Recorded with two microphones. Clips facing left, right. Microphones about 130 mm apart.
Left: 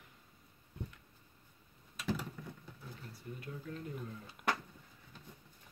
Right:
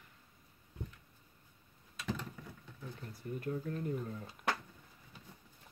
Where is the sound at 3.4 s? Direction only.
45° right (ahead or behind).